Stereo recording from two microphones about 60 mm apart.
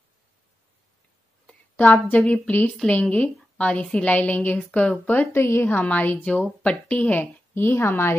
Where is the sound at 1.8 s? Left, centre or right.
Left.